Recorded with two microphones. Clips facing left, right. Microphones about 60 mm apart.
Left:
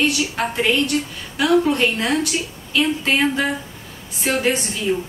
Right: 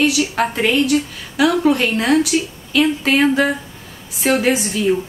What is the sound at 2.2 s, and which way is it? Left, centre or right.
Speech, right.